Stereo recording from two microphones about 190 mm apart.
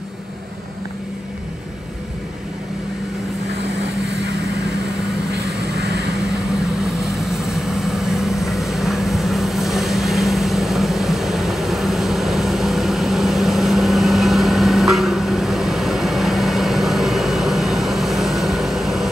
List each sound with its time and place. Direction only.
5.3 s vehicle: 60° right (ahead or behind)
6.8 s vehicle: centre (ahead or behind)